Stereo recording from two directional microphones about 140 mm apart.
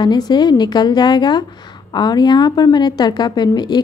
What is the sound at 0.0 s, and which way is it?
A woman's voice, 30° left (ahead or behind).